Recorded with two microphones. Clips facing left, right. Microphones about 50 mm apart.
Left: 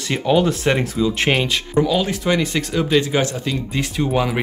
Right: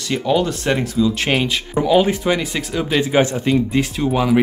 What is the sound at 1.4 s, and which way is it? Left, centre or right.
Speech, centre.